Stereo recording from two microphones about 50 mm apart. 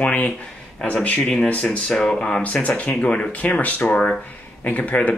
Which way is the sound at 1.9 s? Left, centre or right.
Centre.